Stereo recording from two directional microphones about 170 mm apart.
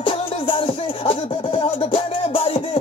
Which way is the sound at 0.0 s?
30° left (ahead or behind).